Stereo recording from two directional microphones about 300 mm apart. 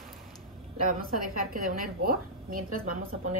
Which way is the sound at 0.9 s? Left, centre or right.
Right.